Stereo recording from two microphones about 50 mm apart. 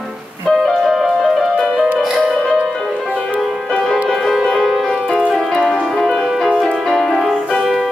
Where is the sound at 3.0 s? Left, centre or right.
Left.